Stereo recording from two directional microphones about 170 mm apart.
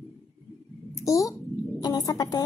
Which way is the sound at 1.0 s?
20° left (ahead or behind).